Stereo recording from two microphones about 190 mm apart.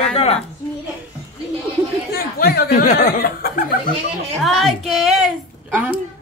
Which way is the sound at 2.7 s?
40° left (ahead or behind).